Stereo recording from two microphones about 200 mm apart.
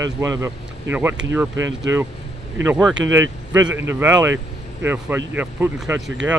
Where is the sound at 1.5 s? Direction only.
70° right (ahead or behind).